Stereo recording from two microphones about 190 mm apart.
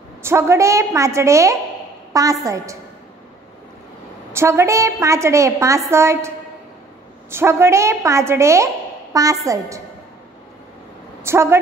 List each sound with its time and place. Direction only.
0.2 s a woman's voice: 15° right (ahead or behind)
4.3 s a woman's voice: 15° right (ahead or behind)
11.2 s a woman's voice: 15° right (ahead or behind)